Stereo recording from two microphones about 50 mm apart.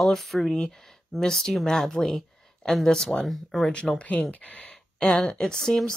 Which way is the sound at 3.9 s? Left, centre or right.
Left.